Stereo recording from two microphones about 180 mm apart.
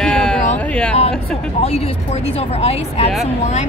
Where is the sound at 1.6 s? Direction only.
35° left (ahead or behind).